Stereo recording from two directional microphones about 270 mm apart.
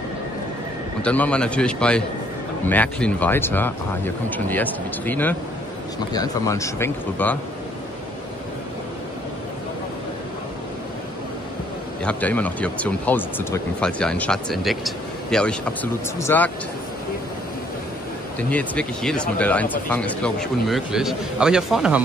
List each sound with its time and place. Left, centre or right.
1.0 s speech: centre
12.0 s speech: centre
18.5 s speech: centre